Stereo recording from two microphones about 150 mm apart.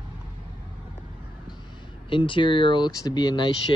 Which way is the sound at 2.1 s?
35° left (ahead or behind).